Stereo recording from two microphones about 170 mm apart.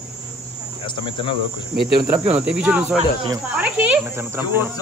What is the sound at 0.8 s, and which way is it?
Speech, 30° left (ahead or behind).